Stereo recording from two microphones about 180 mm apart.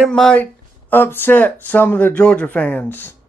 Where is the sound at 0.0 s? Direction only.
5° left (ahead or behind).